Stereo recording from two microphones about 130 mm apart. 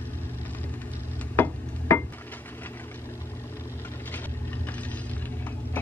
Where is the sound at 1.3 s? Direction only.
15° left (ahead or behind).